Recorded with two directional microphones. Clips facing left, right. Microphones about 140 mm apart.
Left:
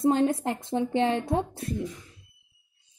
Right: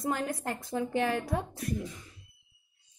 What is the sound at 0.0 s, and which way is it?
A woman's voice, 25° left (ahead or behind).